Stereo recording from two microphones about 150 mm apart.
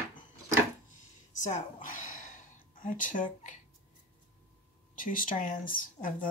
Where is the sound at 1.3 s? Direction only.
55° left (ahead or behind).